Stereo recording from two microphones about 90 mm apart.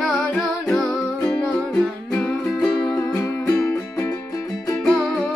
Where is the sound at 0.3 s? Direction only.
15° left (ahead or behind).